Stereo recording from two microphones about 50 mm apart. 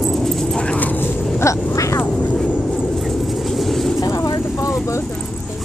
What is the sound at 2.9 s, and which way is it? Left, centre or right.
Vehicle, centre.